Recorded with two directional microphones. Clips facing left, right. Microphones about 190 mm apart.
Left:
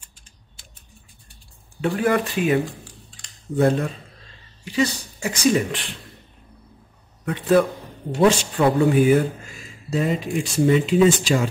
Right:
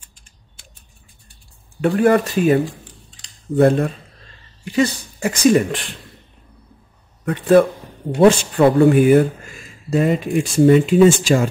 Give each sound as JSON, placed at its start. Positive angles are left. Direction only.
{"t": 1.8, "sound": "speech", "side_deg": -50}
{"t": 3.5, "sound": "speech", "side_deg": -55}
{"t": 7.2, "sound": "speech", "side_deg": -55}